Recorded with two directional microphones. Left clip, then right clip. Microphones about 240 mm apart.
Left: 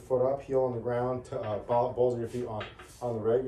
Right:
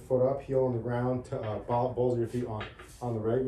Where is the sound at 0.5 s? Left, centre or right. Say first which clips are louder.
Left 1 dB; centre.